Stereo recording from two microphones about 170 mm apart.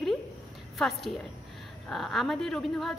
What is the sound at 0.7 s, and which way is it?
A woman's voice, centre (ahead or behind).